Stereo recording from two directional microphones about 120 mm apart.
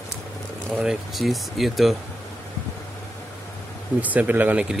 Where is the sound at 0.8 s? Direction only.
5° right (ahead or behind).